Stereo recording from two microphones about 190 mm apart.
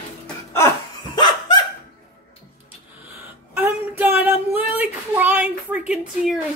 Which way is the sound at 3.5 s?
10° right (ahead or behind).